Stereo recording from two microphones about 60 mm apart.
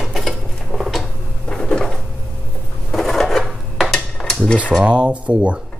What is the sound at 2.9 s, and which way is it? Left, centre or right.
Dishes, centre.